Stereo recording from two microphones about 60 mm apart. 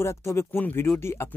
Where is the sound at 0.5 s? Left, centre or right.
Left.